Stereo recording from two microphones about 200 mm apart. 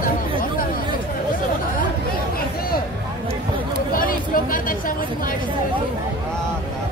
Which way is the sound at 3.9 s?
45° left (ahead or behind).